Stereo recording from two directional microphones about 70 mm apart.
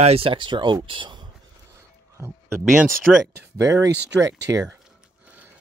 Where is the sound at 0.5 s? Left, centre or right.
Right.